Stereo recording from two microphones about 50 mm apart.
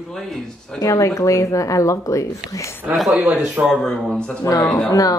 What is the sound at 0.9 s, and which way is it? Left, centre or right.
Speech, left.